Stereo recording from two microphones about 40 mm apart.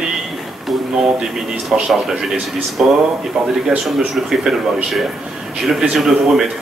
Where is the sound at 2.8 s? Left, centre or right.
Right.